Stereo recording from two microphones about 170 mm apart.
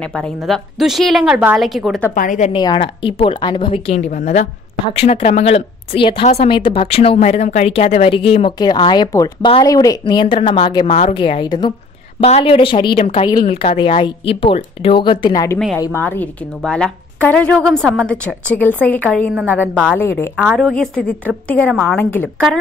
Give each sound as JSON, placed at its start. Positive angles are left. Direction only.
{"t": 0.0, "sound": "a woman's voice", "side_deg": 5}
{"t": 2.1, "sound": "a woman's voice", "side_deg": 50}
{"t": 2.5, "sound": "speech", "side_deg": 30}
{"t": 4.1, "sound": "a woman's voice", "side_deg": 45}
{"t": 12.2, "sound": "a woman's voice", "side_deg": 40}
{"t": 19.7, "sound": "a woman's voice", "side_deg": -5}
{"t": 20.0, "sound": "a woman's voice", "side_deg": 15}
{"t": 20.4, "sound": "a woman's voice", "side_deg": 0}